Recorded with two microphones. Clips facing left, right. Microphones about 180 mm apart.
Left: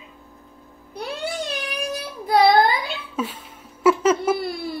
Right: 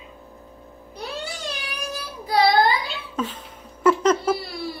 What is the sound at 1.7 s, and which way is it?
Child singing, 55° left (ahead or behind).